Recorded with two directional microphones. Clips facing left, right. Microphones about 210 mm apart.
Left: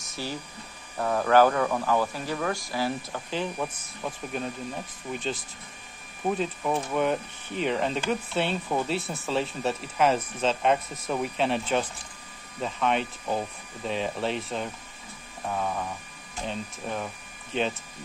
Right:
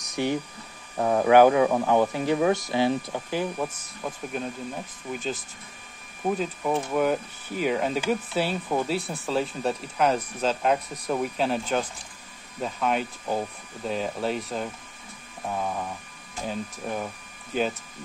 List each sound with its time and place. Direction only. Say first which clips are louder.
0.1 s speech: right 8 dB; 20° right (ahead or behind)